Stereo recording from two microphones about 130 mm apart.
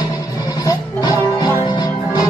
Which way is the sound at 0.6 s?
35° left (ahead or behind).